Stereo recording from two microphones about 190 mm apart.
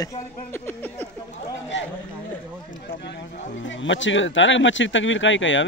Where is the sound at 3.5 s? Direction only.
75° left (ahead or behind).